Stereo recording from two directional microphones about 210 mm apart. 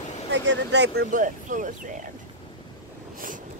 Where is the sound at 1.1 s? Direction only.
40° right (ahead or behind).